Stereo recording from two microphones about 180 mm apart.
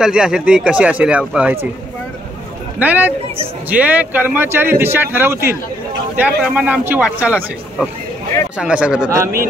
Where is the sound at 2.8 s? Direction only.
10° right (ahead or behind).